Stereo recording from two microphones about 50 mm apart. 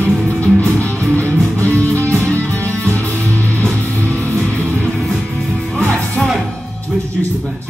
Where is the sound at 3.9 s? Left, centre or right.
Right.